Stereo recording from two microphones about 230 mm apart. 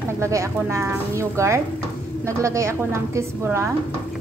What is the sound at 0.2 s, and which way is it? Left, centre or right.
A woman's voice, centre.